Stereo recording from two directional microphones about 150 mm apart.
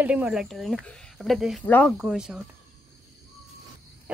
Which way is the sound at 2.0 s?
Centre (ahead or behind).